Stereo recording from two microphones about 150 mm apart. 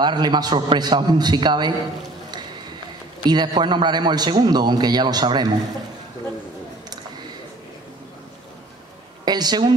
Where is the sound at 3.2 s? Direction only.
30° right (ahead or behind).